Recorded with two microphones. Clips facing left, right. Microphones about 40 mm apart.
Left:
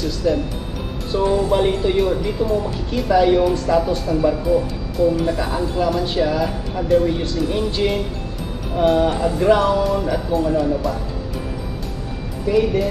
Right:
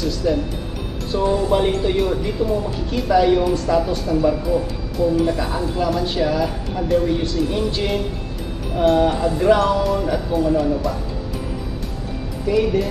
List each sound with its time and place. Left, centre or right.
0.0 s speech: centre
12.4 s speech: centre